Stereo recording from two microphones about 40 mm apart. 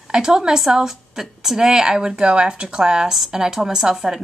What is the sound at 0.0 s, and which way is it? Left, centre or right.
A woman's voice, centre.